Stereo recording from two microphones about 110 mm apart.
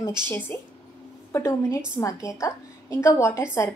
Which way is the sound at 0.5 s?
20° left (ahead or behind).